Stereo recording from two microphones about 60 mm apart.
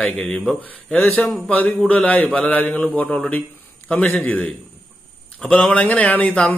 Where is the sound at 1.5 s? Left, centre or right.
Left.